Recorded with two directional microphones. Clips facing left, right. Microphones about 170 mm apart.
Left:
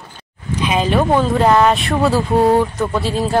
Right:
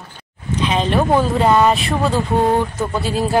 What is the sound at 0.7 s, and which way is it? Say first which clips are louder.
Speech: left 2 dB; 5° left (ahead or behind).